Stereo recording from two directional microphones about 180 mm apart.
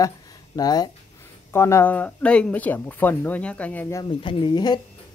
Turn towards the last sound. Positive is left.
turn(degrees=25)  # may be behind; listen again after turning